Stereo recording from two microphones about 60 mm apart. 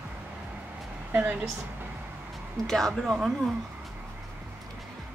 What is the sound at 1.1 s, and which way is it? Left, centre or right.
Speech, right.